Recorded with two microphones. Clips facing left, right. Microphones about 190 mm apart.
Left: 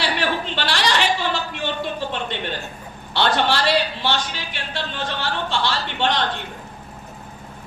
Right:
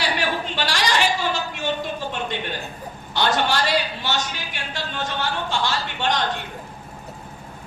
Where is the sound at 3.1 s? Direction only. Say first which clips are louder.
Left 2 dB; 45° right (ahead or behind).